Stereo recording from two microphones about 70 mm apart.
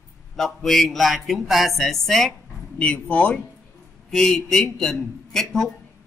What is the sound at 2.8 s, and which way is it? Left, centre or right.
Speech, centre.